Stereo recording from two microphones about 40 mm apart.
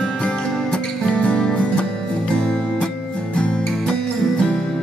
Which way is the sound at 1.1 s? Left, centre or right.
Left.